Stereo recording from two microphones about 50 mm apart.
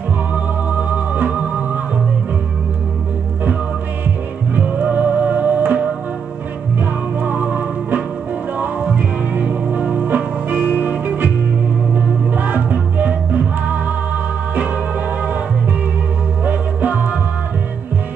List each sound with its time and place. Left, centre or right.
0.7 s music: right
4.6 s music: right
6.8 s music: right
16.4 s music: right